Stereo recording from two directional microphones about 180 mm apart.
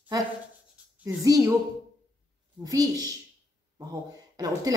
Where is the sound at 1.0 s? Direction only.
20° right (ahead or behind).